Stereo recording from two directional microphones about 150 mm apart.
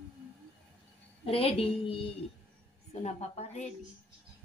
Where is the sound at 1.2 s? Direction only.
40° left (ahead or behind).